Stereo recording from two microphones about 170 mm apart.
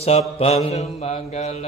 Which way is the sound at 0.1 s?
40° left (ahead or behind).